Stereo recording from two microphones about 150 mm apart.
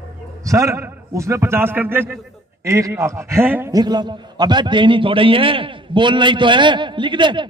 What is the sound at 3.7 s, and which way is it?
A man's voice, 25° right (ahead or behind).